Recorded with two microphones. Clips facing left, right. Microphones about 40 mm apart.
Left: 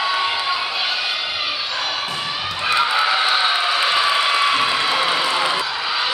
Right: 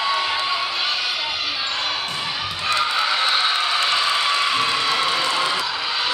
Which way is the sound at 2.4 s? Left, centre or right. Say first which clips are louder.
Left 3 dB; centre.